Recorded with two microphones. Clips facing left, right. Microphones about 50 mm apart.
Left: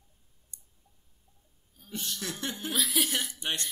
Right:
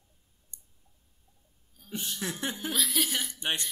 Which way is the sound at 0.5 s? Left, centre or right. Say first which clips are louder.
Even; right.